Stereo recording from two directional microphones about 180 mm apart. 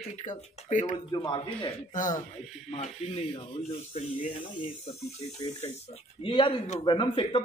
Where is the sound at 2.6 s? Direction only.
35° left (ahead or behind).